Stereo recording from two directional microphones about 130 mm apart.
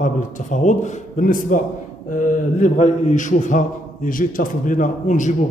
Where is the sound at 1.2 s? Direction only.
90° left.